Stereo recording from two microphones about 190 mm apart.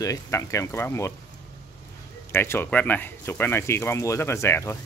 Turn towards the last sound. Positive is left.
turn(degrees=15)  # may be behind; listen again after turning